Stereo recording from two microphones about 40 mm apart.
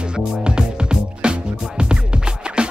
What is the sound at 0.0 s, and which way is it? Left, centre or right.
Music, right.